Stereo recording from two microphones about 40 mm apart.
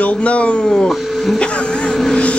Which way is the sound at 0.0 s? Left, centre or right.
Left.